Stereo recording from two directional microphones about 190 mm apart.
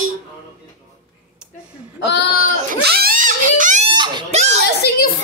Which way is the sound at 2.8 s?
55° right (ahead or behind).